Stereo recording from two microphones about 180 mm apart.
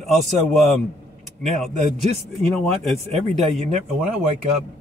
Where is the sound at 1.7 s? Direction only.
40° right (ahead or behind).